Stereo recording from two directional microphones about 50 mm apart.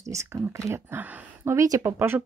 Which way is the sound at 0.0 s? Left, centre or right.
Right.